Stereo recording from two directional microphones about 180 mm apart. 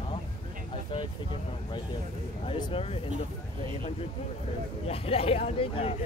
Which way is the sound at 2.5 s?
30° left (ahead or behind).